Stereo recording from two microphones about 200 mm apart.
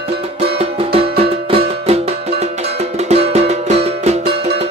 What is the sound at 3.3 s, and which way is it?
Music, 35° right (ahead or behind).